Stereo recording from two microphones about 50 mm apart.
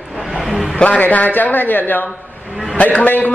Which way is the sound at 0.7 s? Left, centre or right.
Left.